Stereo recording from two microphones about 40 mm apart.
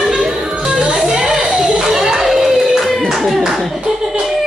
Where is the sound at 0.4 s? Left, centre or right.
Centre.